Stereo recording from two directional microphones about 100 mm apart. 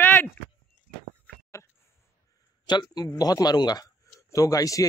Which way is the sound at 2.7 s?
45° left (ahead or behind).